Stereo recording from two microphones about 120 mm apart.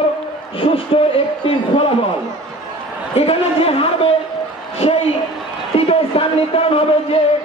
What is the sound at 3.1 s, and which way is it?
A man's voice, 55° left (ahead or behind).